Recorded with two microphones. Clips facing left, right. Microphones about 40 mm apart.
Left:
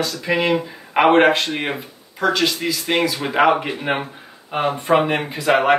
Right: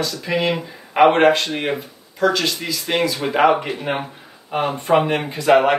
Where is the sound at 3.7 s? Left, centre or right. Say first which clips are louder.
Left 1 dB; centre.